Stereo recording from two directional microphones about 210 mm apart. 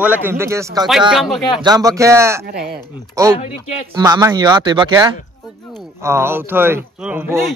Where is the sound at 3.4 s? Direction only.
30° left (ahead or behind).